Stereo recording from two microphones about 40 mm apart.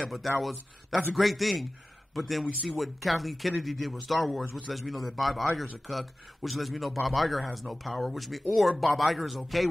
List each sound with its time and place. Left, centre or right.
0.4 s speech: centre